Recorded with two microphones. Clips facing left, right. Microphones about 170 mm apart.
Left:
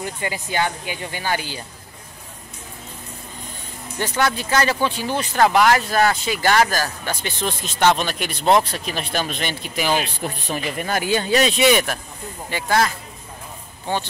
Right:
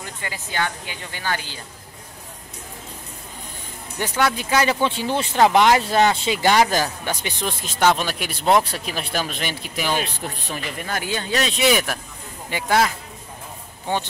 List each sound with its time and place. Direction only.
0.2 s speech: 15° left (ahead or behind)
4.0 s speech: 10° right (ahead or behind)
4.8 s speech: 25° right (ahead or behind); by 9.8 s 5° right (ahead or behind)
10.5 s speech: 15° left (ahead or behind); by 12.9 s 10° right (ahead or behind)